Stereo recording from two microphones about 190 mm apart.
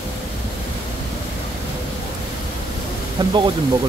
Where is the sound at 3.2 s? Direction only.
25° right (ahead or behind).